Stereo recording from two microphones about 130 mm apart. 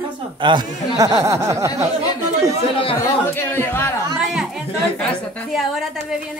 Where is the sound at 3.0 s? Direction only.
15° left (ahead or behind).